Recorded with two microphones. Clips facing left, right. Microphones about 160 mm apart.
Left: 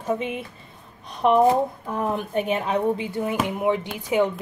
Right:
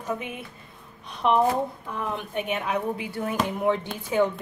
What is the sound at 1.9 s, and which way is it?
A woman's voice, 40° left (ahead or behind).